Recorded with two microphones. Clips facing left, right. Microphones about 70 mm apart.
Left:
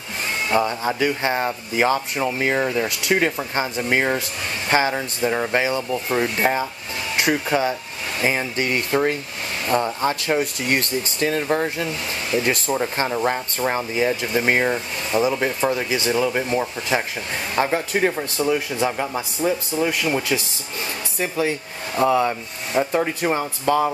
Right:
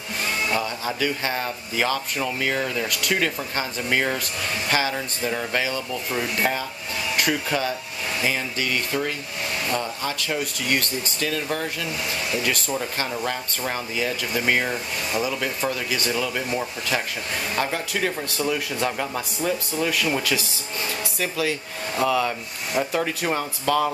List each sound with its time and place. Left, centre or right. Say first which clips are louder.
0.5 s speech: left 5 dB; left
18.1 s a man's voice: left 4 dB; centre
22.0 s speech: left 4 dB; left
22.9 s a man's voice: left 3 dB; centre